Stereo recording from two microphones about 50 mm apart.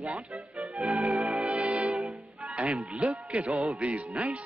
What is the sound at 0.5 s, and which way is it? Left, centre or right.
Music, right.